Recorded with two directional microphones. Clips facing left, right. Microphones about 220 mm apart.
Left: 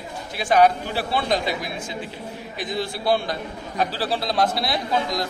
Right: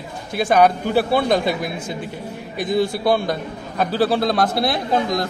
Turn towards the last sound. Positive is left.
turn(degrees=-55)  # may be behind; listen again after turning